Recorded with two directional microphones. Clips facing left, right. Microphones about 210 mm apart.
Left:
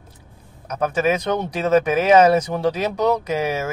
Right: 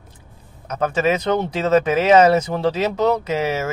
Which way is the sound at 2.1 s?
10° left (ahead or behind).